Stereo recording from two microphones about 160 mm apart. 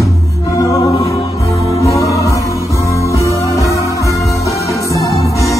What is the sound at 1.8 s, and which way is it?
Music, 20° left (ahead or behind).